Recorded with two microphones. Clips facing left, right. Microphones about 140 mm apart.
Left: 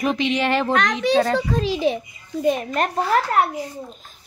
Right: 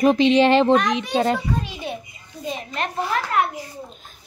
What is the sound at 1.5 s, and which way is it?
Speech, 90° left.